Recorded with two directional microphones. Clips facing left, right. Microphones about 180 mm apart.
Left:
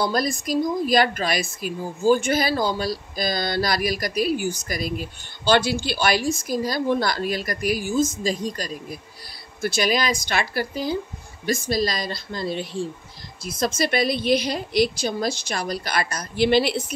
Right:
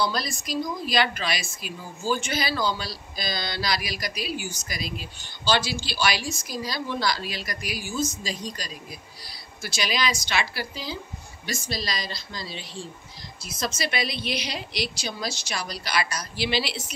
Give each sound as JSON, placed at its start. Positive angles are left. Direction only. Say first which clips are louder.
{"t": 0.0, "sound": "a woman's voice", "louder": "left 5 dB", "side_deg": 50}